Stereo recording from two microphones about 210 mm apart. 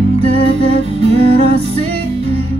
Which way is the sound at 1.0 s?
30° right (ahead or behind).